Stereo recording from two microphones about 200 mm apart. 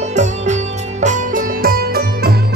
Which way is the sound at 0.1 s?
35° right (ahead or behind).